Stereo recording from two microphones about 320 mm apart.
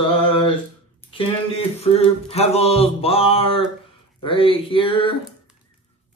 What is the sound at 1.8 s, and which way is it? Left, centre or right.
Mantra, centre.